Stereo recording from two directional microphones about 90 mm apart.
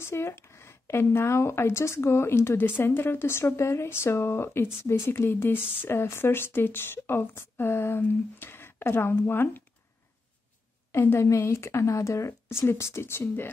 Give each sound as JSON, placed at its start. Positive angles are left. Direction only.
{"t": 0.0, "sound": "a woman's voice", "side_deg": 30}
{"t": 10.9, "sound": "a woman's voice", "side_deg": 25}